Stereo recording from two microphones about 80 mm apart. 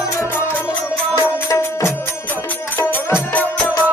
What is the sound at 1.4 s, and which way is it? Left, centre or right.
Music, left.